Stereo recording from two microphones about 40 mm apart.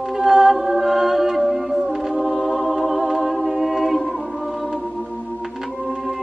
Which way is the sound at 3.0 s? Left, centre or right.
Centre.